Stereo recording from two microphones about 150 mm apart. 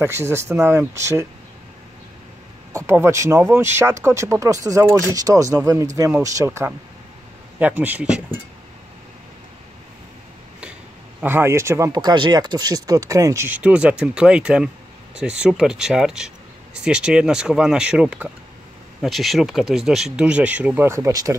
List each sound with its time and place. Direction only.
0.0 s speech: 15° right (ahead or behind)
2.7 s speech: 20° right (ahead or behind)
11.1 s speech: 15° right (ahead or behind)